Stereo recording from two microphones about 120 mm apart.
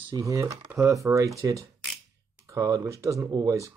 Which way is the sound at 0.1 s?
25° right (ahead or behind).